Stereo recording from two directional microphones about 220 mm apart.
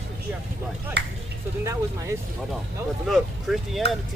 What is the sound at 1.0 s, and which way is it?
Speech, 50° right (ahead or behind).